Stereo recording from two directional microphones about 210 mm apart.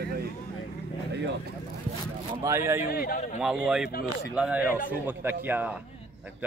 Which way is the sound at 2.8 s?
45° left (ahead or behind).